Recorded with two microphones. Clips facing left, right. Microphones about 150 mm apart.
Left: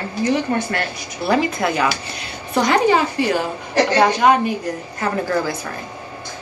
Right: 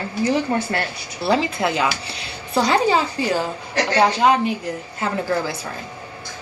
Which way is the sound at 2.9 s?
15° right (ahead or behind).